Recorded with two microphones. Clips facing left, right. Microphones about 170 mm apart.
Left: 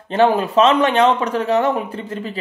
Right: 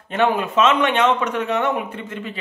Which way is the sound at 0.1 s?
35° left (ahead or behind).